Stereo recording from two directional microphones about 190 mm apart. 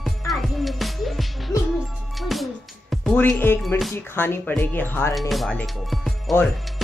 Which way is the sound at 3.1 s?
10° left (ahead or behind).